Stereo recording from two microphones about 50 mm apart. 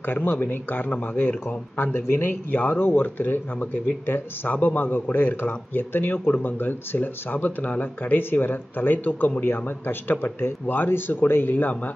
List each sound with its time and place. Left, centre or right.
0.0 s speech: left